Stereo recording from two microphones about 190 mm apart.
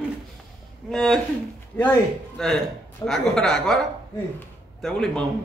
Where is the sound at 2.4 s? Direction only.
Centre (ahead or behind).